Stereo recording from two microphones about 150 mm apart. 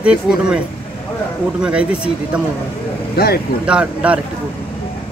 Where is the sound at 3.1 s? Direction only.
90° left.